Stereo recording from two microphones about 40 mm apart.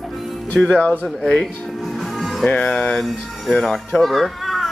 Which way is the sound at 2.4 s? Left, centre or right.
Left.